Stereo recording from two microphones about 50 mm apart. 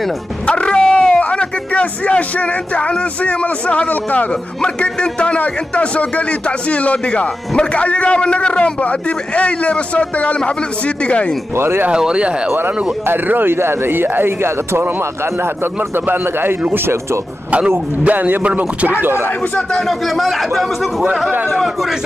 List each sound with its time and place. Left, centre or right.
0.5 s speech: left
4.6 s a man's voice: centre
11.5 s speech: right
11.9 s speech: centre
13.0 s a man's voice: right
17.6 s speech: right
19.9 s speech: centre